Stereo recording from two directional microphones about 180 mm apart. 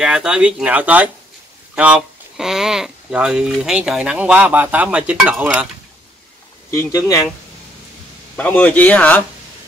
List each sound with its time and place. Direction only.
0.0 s speech: 5° right (ahead or behind)
6.7 s speech: 15° left (ahead or behind)
8.4 s speech: 10° left (ahead or behind)